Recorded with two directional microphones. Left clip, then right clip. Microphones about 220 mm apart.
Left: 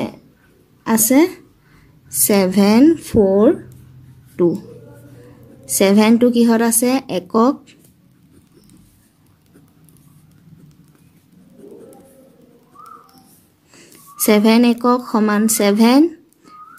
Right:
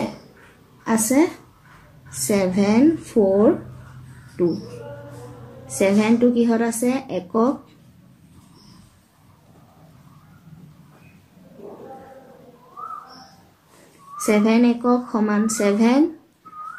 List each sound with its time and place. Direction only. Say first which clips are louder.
0.8 s speech: left 4 dB; 45° left (ahead or behind)
5.8 s speech: left 5 dB; 50° left (ahead or behind)
14.1 s speech: left 5 dB; 50° left (ahead or behind)